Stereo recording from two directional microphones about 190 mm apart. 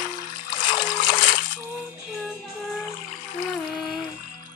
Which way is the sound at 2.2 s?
Centre (ahead or behind).